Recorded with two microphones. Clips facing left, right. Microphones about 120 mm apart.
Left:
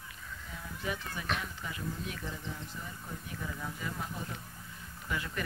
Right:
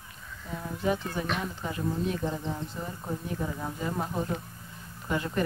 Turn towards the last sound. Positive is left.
turn(degrees=-35)  # may be behind; listen again after turning